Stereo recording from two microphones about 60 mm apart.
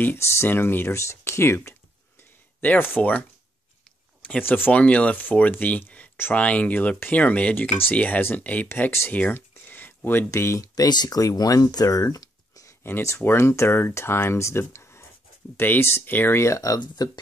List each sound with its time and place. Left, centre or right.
0.2 s speech: left
3.0 s speech: left
4.4 s speech: left
4.7 s speech: left
8.2 s speech: left
9.5 s a sound: left
10.3 s speech: left
13.2 s speech: left
15.5 s speech: left